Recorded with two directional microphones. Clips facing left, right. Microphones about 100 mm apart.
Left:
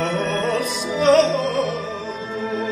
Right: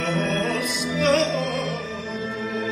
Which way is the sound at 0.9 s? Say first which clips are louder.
Left 6 dB; 35° left (ahead or behind).